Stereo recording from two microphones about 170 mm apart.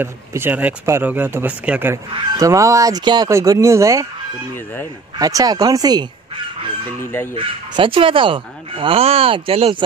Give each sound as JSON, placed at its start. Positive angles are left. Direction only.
{"t": 0.0, "sound": "speech", "side_deg": -15}
{"t": 2.1, "sound": "speech", "side_deg": -20}
{"t": 5.2, "sound": "speech", "side_deg": -20}
{"t": 7.0, "sound": "speech", "side_deg": 15}
{"t": 7.3, "sound": "speech", "side_deg": -30}